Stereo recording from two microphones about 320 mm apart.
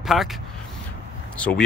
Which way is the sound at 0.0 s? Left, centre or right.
Centre.